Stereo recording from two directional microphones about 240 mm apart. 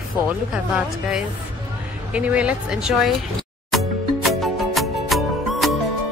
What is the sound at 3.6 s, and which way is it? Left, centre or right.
Music, centre.